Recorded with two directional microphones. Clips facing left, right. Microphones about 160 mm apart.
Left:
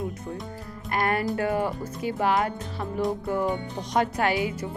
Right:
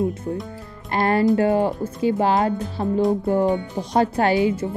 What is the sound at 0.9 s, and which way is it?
Speech, 30° right (ahead or behind).